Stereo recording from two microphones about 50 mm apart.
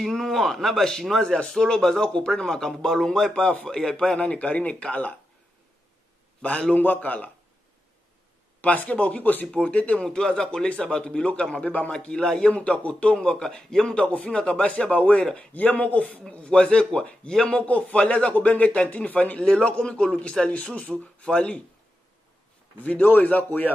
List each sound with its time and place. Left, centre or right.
0.1 s a man's voice: centre
3.9 s speech: left
6.4 s a man's voice: left
8.5 s a man's voice: left
9.5 s speech: left
10.0 s speech: centre
16.4 s speech: centre
17.6 s speech: left
19.4 s speech: centre
22.8 s a man's voice: left